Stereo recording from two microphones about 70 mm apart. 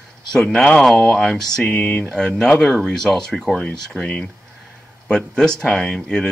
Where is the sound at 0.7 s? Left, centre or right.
Centre.